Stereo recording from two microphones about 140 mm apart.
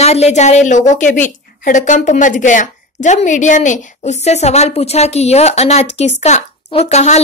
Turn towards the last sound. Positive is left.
turn(degrees=50)  # may be behind; listen again after turning